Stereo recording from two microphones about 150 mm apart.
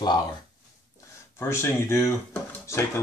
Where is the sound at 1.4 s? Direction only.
20° left (ahead or behind).